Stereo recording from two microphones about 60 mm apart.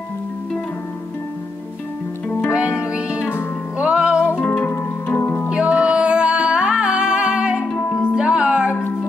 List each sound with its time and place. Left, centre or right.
2.5 s music: centre
4.4 s music: left
5.5 s music: centre